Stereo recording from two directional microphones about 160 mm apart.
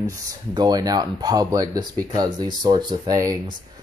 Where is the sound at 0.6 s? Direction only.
25° right (ahead or behind).